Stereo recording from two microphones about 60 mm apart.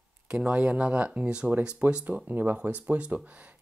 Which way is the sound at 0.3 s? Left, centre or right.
Centre.